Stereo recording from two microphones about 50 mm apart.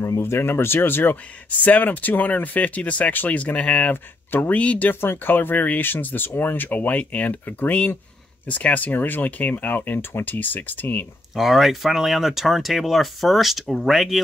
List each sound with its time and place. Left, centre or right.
0.0 s speech: left
1.6 s speech: left
3.9 s speech: left
4.8 s speech: left
11.3 s speech: centre